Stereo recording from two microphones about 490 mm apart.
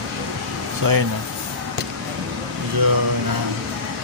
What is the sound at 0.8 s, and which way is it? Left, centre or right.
Speech, right.